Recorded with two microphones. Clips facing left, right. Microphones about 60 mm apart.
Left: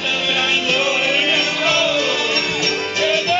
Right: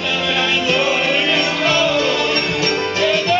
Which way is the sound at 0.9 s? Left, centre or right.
Centre.